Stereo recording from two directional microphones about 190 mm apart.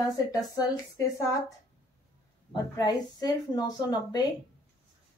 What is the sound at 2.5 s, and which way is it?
A woman's voice, 20° left (ahead or behind).